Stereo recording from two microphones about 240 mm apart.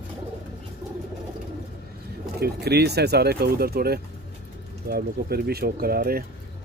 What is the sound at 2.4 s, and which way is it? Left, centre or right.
Speech, right.